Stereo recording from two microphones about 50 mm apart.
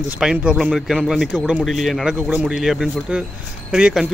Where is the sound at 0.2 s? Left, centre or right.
Centre.